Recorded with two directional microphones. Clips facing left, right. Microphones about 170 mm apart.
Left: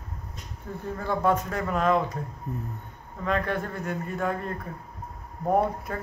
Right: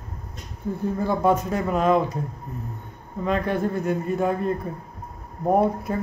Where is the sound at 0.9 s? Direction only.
15° right (ahead or behind).